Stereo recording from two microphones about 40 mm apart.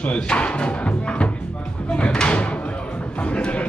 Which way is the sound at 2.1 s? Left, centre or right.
Left.